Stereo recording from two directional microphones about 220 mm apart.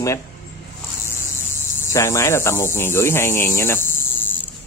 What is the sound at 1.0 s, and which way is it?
Speech, 10° left (ahead or behind).